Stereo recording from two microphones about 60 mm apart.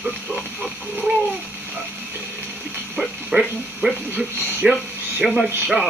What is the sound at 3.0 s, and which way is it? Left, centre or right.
Speech, centre.